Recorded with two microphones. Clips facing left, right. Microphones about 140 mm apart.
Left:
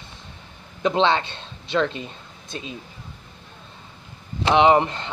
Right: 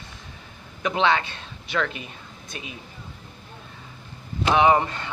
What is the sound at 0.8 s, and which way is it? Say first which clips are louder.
A man's voice: left 2 dB; 25° left (ahead or behind).